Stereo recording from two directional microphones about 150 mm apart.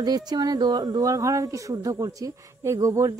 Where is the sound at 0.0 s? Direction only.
25° right (ahead or behind).